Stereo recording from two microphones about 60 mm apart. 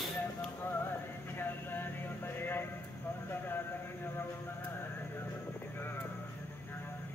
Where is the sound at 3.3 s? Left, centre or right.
Left.